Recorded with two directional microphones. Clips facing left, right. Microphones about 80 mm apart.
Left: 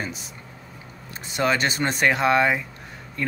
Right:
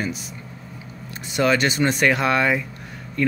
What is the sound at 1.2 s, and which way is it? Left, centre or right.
Speech, left.